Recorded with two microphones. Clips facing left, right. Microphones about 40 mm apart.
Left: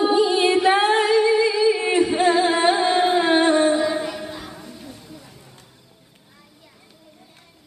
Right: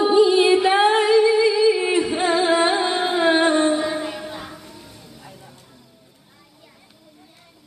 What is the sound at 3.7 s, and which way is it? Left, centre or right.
Music, centre.